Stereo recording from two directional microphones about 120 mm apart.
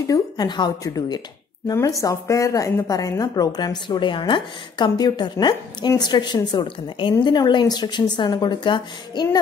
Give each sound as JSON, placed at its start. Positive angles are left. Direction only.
{"t": 0.0, "sound": "a woman's voice", "side_deg": 30}